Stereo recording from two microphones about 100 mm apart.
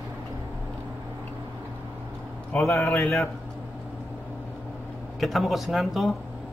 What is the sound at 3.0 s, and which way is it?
Speech, 5° left (ahead or behind).